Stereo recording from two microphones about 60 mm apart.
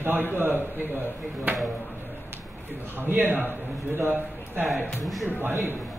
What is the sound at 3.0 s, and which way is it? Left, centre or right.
A man's voice, right.